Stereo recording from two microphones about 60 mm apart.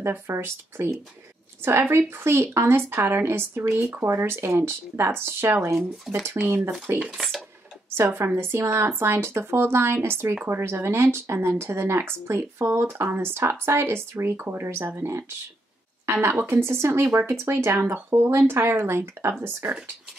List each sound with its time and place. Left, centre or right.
0.3 s speech: right
5.8 s speech: centre
6.3 s speech: right
7.1 s speech: centre
8.4 s speech: right